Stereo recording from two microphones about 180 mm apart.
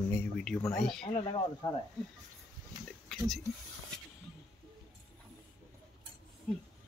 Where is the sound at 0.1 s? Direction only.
5° left (ahead or behind).